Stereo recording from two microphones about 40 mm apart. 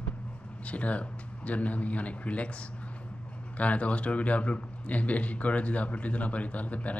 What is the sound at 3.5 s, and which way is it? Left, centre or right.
Speech, left.